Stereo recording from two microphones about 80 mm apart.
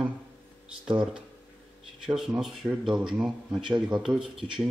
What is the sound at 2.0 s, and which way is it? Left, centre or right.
Speech, centre.